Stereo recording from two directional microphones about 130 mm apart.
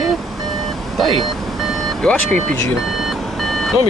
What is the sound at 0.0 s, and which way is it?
Vehicle, centre (ahead or behind).